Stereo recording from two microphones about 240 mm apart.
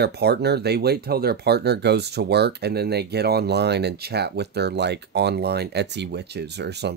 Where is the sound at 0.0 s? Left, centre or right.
Right.